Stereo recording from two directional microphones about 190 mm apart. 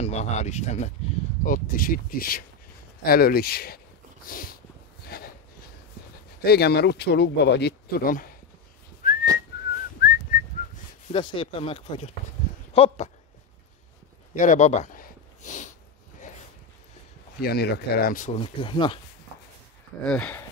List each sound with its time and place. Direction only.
0.0 s speech: 35° left (ahead or behind)
5.0 s a sound: 55° left (ahead or behind)
6.4 s speech: 60° left (ahead or behind)
9.0 s whistling: 45° left (ahead or behind)
9.5 s whistling: 60° left (ahead or behind)
10.3 s whistling: 50° left (ahead or behind)
11.1 s speech: 25° left (ahead or behind)
14.3 s a sound: 40° left (ahead or behind)
17.4 s speech: 55° left (ahead or behind)
18.4 s speech: 25° left (ahead or behind)
20.1 s speech: 10° left (ahead or behind)